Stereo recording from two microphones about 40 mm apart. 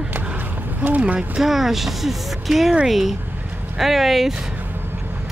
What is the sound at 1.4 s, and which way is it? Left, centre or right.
Speech, centre.